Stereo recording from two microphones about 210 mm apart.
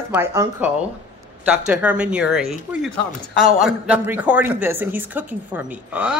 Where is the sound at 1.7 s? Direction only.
5° right (ahead or behind).